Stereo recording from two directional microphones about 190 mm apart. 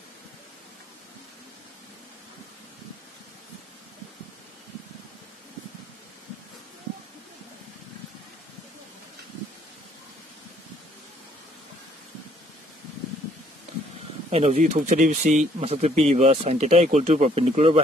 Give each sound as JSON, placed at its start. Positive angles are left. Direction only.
{"t": 14.3, "sound": "speech", "side_deg": -35}